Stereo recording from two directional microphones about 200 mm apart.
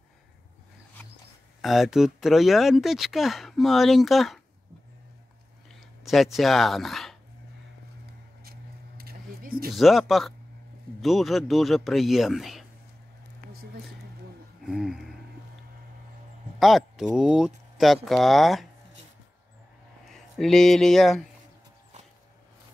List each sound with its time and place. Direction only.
1.6 s speech: centre (ahead or behind)
5.7 s speech: centre (ahead or behind)
8.5 s a sound: 50° right (ahead or behind)
9.8 s speech: centre (ahead or behind)
14.6 s a sound: centre (ahead or behind)
16.5 s speech: centre (ahead or behind)
20.3 s speech: centre (ahead or behind)